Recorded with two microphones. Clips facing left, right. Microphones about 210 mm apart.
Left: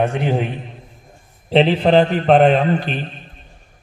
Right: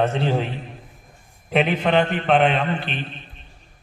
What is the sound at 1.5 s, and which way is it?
A man's voice, 30° left (ahead or behind).